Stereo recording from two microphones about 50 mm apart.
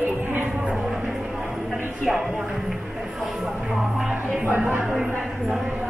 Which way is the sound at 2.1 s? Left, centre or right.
Centre.